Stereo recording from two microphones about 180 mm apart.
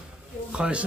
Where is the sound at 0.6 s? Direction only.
5° right (ahead or behind).